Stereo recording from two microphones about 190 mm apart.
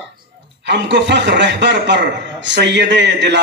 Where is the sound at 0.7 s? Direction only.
70° right (ahead or behind).